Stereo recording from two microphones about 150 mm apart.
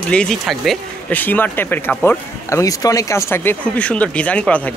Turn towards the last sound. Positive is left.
turn(degrees=10)  # may be behind; listen again after turning